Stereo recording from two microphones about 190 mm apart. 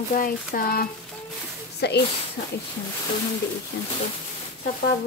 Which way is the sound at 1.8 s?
60° left (ahead or behind).